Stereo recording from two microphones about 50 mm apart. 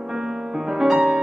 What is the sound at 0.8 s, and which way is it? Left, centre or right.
Music, centre.